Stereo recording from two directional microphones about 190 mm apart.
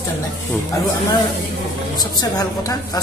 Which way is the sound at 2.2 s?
20° left (ahead or behind).